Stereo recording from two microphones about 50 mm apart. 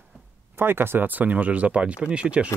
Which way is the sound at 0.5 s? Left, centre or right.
Right.